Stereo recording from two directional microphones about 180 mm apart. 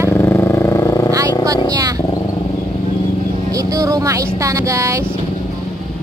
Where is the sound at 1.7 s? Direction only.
20° right (ahead or behind).